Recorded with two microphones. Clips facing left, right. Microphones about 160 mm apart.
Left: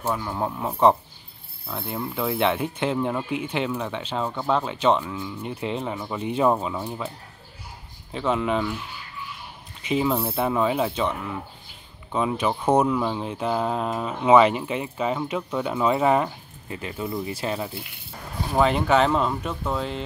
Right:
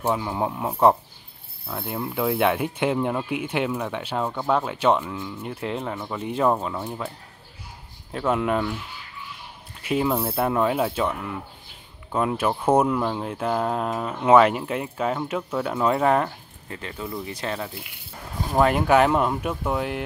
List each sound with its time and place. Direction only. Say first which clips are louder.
0.0 s speech: right 2 dB; 15° right (ahead or behind)
8.1 s speech: right 1 dB; centre (ahead or behind)
9.8 s speech: even; 5° right (ahead or behind)
16.6 s speech: left 3 dB; 20° left (ahead or behind)
18.5 s speech: right 1 dB; 5° right (ahead or behind)